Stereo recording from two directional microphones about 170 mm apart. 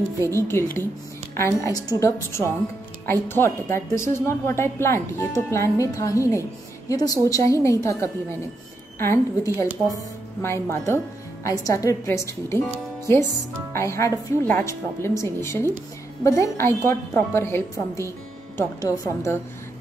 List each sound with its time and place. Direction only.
0.4 s a woman's voice: 15° left (ahead or behind)